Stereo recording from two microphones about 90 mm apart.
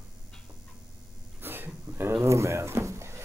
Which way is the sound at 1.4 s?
25° right (ahead or behind).